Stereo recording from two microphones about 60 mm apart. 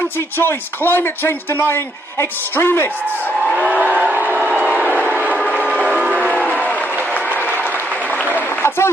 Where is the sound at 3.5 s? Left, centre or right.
Right.